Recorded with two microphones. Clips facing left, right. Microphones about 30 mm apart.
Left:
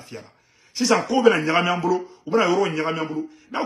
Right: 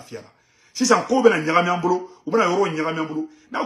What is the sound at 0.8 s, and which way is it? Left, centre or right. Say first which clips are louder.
Speech: right 2 dB; left.